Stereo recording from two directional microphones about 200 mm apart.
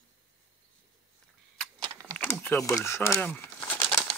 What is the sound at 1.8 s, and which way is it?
Typing, 20° right (ahead or behind).